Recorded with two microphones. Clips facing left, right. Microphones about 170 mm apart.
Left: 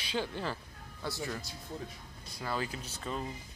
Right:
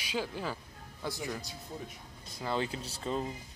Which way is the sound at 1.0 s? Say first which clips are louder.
Right 1 dB; 15° right (ahead or behind).